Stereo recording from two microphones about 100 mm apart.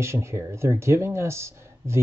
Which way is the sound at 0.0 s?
30° right (ahead or behind).